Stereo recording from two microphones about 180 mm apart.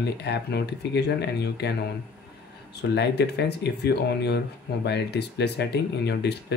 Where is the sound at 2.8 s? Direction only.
70° left (ahead or behind).